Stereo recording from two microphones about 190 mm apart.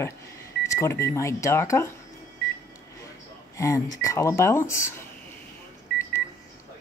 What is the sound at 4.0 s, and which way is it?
Speech, 15° left (ahead or behind).